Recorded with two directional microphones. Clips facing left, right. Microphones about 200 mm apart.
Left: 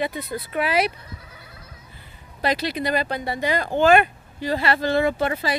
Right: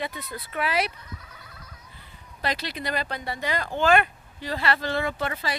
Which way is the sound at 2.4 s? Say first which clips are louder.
Left 7 dB; 10° left (ahead or behind).